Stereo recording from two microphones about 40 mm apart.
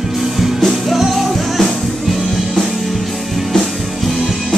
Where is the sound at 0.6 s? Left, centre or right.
Centre.